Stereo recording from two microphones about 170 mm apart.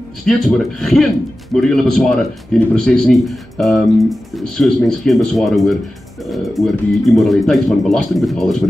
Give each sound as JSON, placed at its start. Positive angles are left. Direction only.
{"t": 0.2, "sound": "a man's voice", "side_deg": 5}